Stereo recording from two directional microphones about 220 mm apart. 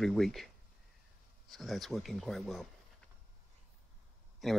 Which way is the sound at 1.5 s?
Centre (ahead or behind).